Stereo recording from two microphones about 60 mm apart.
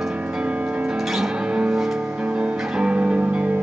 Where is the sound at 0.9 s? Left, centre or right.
Centre; by 3.6 s right.